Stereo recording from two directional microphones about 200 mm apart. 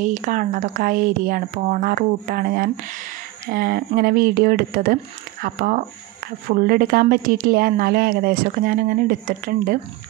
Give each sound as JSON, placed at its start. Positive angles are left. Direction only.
{"t": 0.0, "sound": "speech", "side_deg": -40}